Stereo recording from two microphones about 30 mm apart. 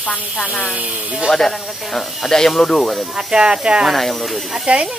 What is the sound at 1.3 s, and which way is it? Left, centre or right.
Speech, centre.